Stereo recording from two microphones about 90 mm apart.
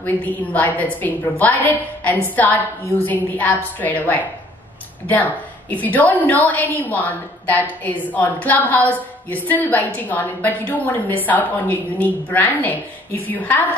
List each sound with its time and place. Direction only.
0.0 s a woman's voice: 15° left (ahead or behind)